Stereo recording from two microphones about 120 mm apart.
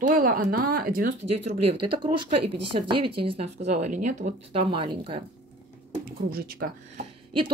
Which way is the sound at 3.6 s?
90° right.